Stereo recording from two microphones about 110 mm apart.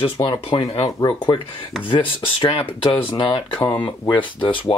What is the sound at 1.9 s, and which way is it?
Speech, 55° left (ahead or behind).